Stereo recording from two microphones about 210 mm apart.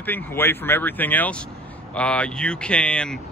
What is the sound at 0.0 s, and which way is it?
Speech, 10° left (ahead or behind).